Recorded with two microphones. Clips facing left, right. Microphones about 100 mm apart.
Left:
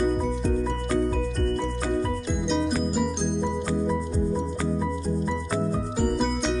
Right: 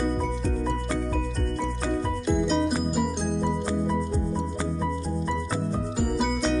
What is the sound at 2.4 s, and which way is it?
Music, centre (ahead or behind).